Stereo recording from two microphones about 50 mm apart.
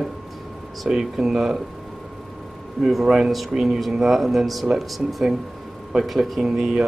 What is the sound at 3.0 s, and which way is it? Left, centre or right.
Speech, centre.